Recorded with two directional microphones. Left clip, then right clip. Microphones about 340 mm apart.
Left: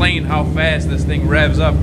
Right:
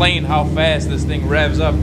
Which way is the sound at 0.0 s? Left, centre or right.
Centre.